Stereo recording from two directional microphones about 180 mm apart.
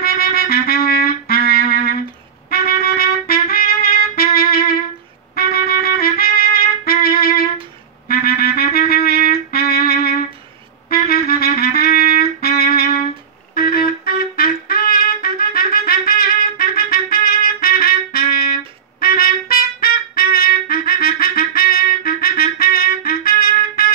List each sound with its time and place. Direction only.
0.0 s trumpet: 60° left (ahead or behind)
5.3 s music: 60° left (ahead or behind)